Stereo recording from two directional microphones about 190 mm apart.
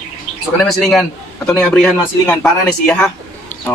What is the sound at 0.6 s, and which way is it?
Speech, 5° left (ahead or behind).